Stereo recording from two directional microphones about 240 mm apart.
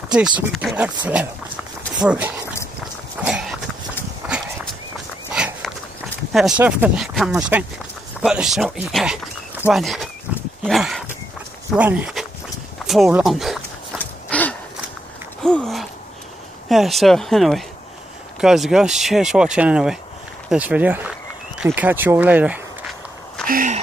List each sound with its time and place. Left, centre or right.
0.1 s speech: centre
2.8 s horse: centre
4.2 s walk: centre
5.3 s dog: centre
6.3 s speech: centre
12.8 s a sound: centre
15.4 s speech: centre
21.5 s walk: centre
23.4 s a sound: right